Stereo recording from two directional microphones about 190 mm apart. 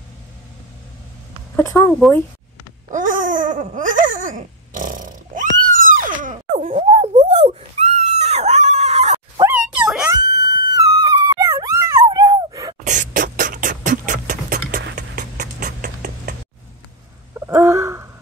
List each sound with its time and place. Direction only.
1.9 s speech: centre (ahead or behind)
2.9 s babbling: 45° right (ahead or behind)
9.4 s dog: 10° right (ahead or behind)
10.0 s music: 20° right (ahead or behind)
12.8 s beatboxing: 45° right (ahead or behind)
15.0 s a sound: 45° right (ahead or behind)
17.3 s a sound: 15° right (ahead or behind)